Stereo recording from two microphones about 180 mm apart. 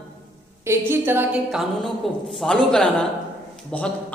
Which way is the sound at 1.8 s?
5° left (ahead or behind).